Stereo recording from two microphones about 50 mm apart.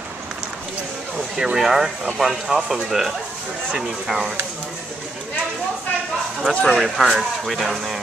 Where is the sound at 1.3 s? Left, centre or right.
Centre.